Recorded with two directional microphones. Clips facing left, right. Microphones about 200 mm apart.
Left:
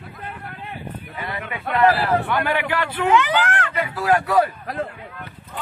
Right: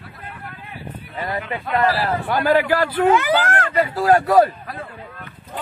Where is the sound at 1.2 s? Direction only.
45° right (ahead or behind).